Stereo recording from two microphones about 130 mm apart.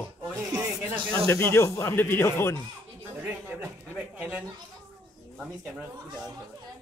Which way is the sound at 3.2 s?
10° right (ahead or behind).